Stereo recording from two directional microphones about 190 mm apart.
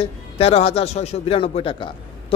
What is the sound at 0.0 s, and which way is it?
Speech, 30° left (ahead or behind).